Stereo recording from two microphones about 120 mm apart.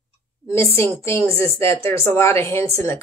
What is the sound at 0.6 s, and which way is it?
Speech, 20° left (ahead or behind).